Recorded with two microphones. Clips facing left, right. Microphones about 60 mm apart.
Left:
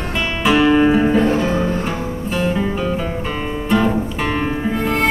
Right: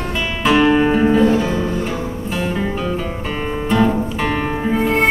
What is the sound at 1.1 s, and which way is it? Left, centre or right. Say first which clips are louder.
Music: right 1 dB; left.